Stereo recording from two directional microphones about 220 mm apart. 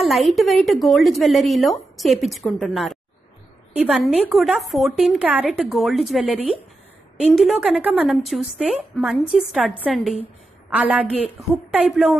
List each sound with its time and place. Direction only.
0.0 s a woman's voice: centre (ahead or behind)